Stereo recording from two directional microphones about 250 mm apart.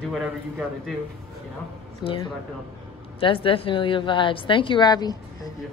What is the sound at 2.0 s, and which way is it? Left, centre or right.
A woman's voice, centre.